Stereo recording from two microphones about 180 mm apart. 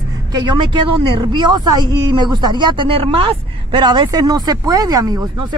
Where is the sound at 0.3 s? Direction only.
25° right (ahead or behind).